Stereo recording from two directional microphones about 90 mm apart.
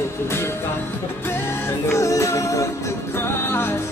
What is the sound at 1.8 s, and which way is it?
Music, 35° left (ahead or behind).